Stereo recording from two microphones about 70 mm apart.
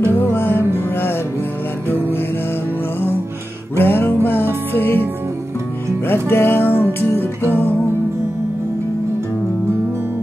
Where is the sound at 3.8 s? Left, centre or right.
Left.